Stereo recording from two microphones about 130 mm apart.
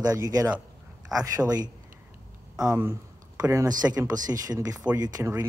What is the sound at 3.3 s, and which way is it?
A man's voice, 25° right (ahead or behind).